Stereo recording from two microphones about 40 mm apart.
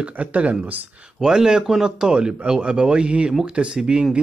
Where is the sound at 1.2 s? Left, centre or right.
Centre.